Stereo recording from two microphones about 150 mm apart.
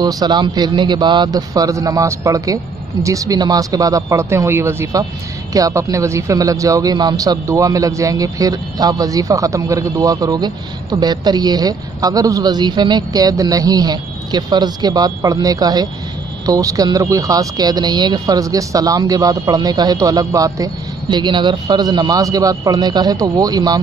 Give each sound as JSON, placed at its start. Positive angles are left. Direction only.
{"t": 0.0, "sound": "speech", "side_deg": -25}